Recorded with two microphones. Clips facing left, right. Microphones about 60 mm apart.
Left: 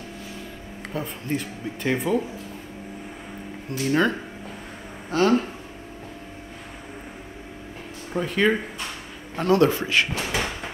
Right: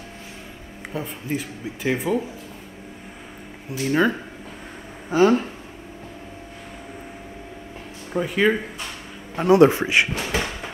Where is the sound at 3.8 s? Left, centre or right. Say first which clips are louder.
Right 1 dB; centre.